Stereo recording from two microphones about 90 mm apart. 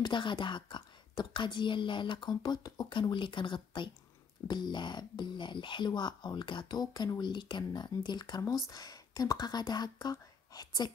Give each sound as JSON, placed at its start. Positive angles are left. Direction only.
{"t": 0.0, "sound": "speech", "side_deg": 60}
{"t": 8.4, "sound": "speech", "side_deg": 40}